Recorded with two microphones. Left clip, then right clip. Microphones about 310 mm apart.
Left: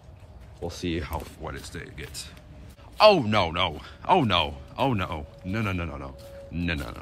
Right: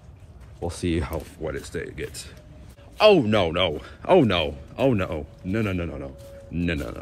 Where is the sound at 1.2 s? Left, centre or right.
Centre.